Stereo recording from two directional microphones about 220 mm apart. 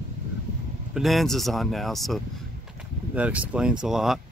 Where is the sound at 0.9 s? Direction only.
Centre (ahead or behind).